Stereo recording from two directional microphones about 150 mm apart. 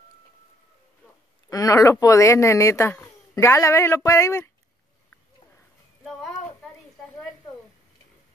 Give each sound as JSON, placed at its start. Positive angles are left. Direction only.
{"t": 1.5, "sound": "speech", "side_deg": 20}